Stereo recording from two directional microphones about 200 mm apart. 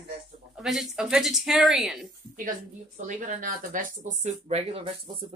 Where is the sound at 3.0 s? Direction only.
40° right (ahead or behind).